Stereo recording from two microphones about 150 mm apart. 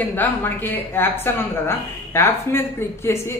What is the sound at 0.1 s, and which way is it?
A woman's voice, 15° left (ahead or behind).